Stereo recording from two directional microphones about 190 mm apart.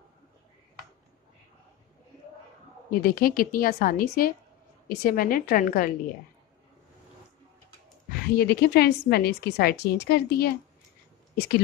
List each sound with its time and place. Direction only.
2.9 s a woman's voice: 50° left (ahead or behind)
8.1 s a woman's voice: 55° left (ahead or behind)